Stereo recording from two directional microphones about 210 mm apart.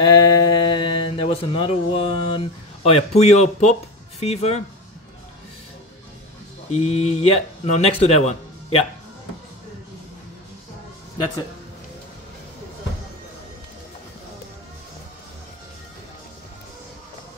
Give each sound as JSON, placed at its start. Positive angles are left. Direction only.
{"t": 0.0, "sound": "speech", "side_deg": 20}
{"t": 6.7, "sound": "speech", "side_deg": 30}